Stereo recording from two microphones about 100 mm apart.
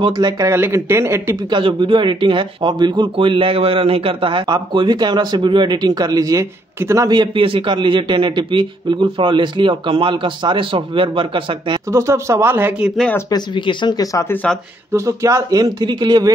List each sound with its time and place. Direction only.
0.0 s speech: 40° right (ahead or behind)
0.5 s speech: 25° right (ahead or behind)
1.5 s speech: 55° right (ahead or behind); by 7.1 s 30° right (ahead or behind)
7.1 s a man's voice: 55° right (ahead or behind)
11.9 s speech: 30° right (ahead or behind)
13.3 s speech: 50° left (ahead or behind)
14.9 s speech: 30° right (ahead or behind)